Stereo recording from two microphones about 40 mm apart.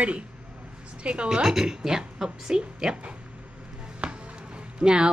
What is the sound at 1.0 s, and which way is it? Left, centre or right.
Speech, right.